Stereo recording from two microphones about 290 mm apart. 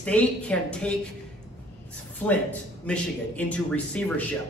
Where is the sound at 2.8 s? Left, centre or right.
Centre.